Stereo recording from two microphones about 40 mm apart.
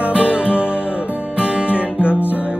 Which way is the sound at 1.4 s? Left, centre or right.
Right.